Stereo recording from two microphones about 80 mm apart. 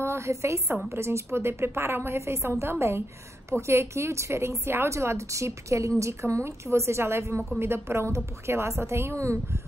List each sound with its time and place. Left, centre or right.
0.0 s a woman's voice: right